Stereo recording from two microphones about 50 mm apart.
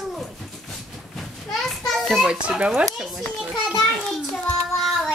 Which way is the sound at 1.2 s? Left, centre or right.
Centre.